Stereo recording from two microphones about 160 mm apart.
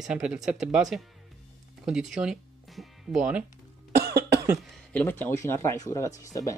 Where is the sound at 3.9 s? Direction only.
90° right.